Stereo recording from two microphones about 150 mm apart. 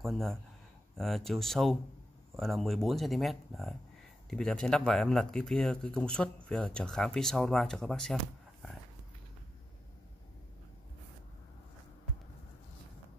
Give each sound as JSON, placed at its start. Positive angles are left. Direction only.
{"t": 0.0, "sound": "speech", "side_deg": 0}